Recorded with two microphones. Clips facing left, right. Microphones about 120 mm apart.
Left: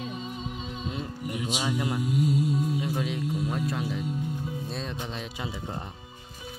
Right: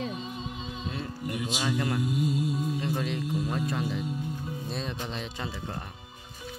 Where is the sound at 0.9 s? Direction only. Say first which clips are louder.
Right 1 dB; 10° left (ahead or behind).